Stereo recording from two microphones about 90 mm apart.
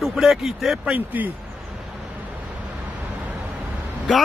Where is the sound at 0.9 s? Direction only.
20° right (ahead or behind).